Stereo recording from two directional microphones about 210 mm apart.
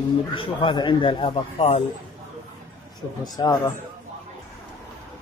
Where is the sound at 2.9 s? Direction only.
20° left (ahead or behind).